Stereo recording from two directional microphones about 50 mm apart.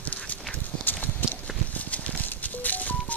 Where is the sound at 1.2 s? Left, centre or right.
Left.